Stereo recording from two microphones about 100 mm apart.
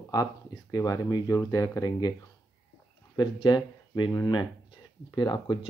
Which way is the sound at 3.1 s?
50° left (ahead or behind).